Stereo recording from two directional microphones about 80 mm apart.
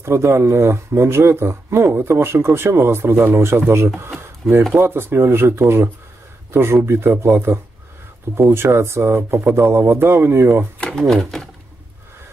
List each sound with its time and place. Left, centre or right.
0.0 s speech: right
10.8 s speech: centre